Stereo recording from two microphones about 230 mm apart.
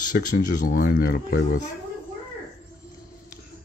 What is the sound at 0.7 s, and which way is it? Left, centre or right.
Speech, left.